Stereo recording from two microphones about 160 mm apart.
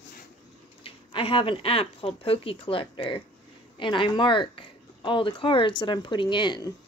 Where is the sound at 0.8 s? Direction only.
35° left (ahead or behind).